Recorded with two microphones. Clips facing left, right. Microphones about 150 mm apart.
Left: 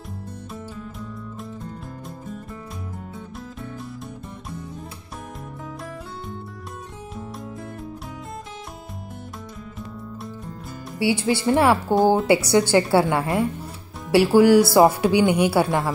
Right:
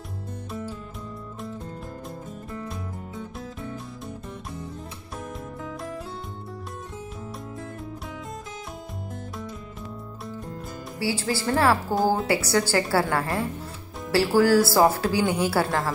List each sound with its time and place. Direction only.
11.0 s a woman's voice: 20° left (ahead or behind)